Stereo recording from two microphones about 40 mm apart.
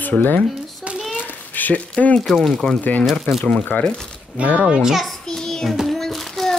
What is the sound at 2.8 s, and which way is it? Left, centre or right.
Speech, left.